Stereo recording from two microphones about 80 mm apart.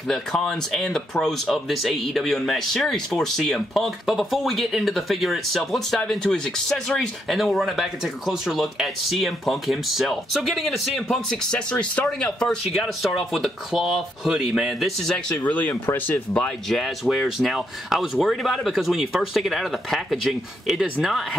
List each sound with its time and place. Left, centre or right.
0.1 s speech: centre
11.7 s speech: centre
12.3 s speech: centre; by 16.2 s left
16.3 s speech: centre